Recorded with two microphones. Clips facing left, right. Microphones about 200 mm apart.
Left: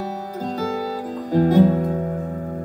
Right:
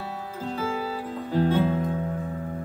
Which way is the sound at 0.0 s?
40° left (ahead or behind).